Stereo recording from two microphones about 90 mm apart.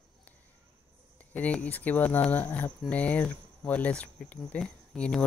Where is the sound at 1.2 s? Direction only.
15° left (ahead or behind).